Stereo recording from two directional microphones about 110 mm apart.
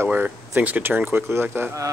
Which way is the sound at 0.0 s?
20° right (ahead or behind).